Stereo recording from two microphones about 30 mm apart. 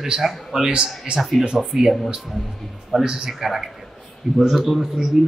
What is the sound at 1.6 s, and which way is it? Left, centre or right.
Speech, centre.